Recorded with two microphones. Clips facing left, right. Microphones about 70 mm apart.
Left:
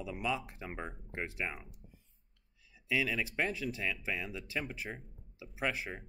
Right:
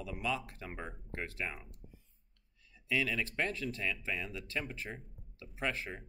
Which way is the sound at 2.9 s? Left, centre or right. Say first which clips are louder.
Left 1 dB; centre.